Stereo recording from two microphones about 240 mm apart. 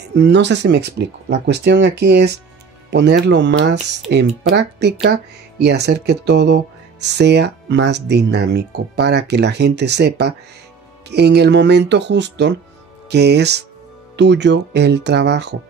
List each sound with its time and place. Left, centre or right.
0.1 s speech: right